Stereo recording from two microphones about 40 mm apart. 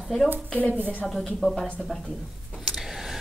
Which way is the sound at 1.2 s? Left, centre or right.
Centre.